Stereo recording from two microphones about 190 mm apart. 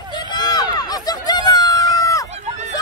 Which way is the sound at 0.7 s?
20° left (ahead or behind).